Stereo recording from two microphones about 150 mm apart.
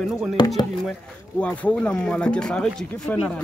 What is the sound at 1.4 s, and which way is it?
Speech, 10° left (ahead or behind).